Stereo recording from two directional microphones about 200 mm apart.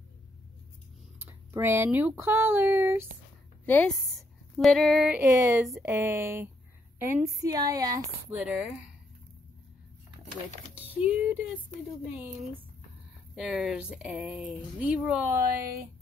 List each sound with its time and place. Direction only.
1.2 s speech: 10° right (ahead or behind)
3.6 s a woman's voice: 10° left (ahead or behind); by 8.5 s 15° right (ahead or behind)
8.5 s speech: 5° right (ahead or behind)
10.7 s speech: 10° right (ahead or behind)